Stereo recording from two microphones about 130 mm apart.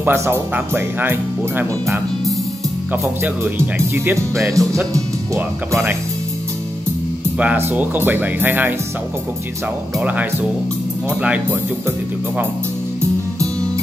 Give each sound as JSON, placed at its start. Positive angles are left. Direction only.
{"t": 0.0, "sound": "speech", "side_deg": -20}
{"t": 7.3, "sound": "speech", "side_deg": -15}
{"t": 11.1, "sound": "speech", "side_deg": -10}